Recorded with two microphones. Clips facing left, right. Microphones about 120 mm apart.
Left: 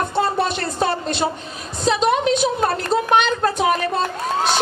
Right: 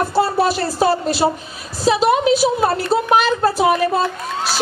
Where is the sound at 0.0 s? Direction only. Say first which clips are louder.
Right 4 dB; 5° right (ahead or behind).